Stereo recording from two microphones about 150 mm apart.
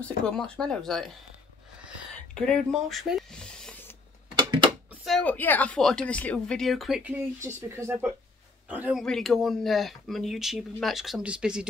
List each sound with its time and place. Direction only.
0.0 s speech: 5° left (ahead or behind)
2.3 s a sound: 5° left (ahead or behind)
4.4 s a sound: 30° right (ahead or behind)
5.0 s speech: 5° left (ahead or behind)
7.4 s speech: 15° right (ahead or behind)
9.0 s speech: centre (ahead or behind)